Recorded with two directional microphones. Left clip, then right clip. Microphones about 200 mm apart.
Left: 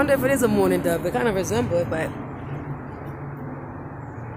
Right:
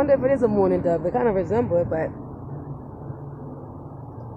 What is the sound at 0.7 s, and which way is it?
Speech, 5° left (ahead or behind).